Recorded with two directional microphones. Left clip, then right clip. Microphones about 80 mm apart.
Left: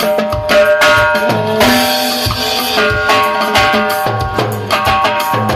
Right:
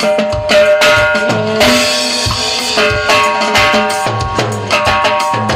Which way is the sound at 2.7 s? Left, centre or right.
Left.